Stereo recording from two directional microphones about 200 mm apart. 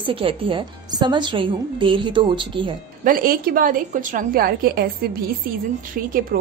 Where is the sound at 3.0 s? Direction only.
45° right (ahead or behind).